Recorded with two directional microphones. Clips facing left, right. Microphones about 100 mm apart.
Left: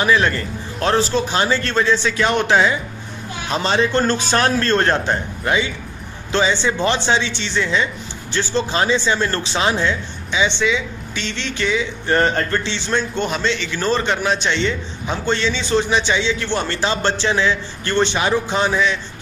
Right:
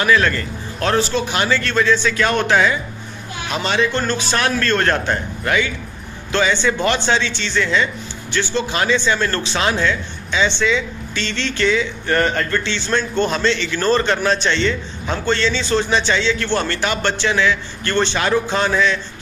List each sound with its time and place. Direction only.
0.0 s a man's voice: 25° left (ahead or behind)
8.3 s speech: 35° left (ahead or behind); by 11.8 s 10° left (ahead or behind)
12.1 s a man's voice: 30° left (ahead or behind)